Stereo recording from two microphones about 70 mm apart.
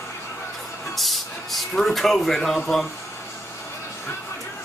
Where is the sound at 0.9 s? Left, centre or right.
Centre.